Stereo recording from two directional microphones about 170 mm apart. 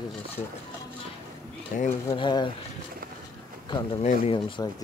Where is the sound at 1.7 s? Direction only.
55° left (ahead or behind).